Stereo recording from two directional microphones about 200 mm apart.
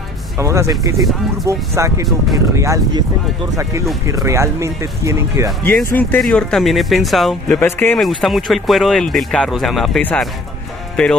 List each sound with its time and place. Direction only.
0.4 s speech: 15° right (ahead or behind)
4.0 s speech: 15° right (ahead or behind)
5.6 s speech: 10° left (ahead or behind)